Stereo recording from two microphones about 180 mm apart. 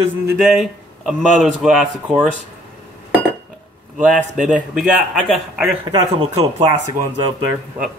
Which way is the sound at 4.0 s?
45° right (ahead or behind).